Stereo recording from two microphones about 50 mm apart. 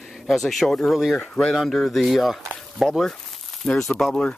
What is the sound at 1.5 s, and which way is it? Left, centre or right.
Speech, centre.